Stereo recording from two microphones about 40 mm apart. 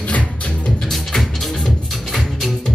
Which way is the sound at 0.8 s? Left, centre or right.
Centre.